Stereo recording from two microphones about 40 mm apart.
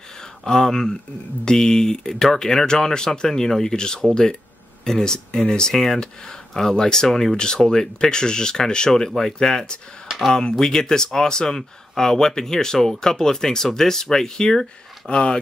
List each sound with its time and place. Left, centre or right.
0.2 s speech: centre
7.3 s speech: left
15.0 s speech: left